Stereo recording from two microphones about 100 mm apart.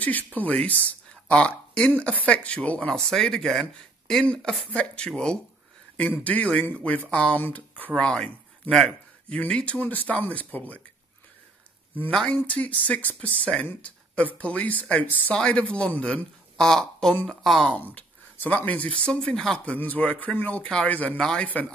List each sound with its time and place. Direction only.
0.0 s speech: 15° left (ahead or behind)
12.1 s speech: 5° left (ahead or behind)
12.4 s speech: 15° left (ahead or behind)
17.9 s speech: 15° left (ahead or behind)